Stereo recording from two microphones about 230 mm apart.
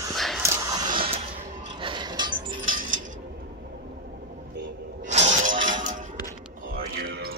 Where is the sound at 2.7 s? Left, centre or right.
Right.